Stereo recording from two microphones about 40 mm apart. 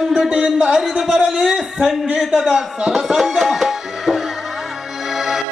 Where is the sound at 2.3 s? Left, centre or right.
Centre.